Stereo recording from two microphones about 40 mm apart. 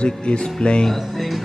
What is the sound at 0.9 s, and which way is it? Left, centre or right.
Speech, centre.